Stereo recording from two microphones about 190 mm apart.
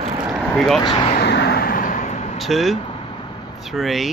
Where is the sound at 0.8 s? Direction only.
25° left (ahead or behind).